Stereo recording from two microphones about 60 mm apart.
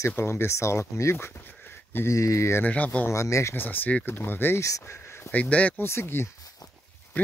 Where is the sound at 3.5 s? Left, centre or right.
Left.